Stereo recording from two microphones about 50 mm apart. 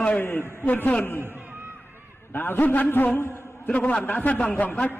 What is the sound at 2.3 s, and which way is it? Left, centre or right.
Speech, left.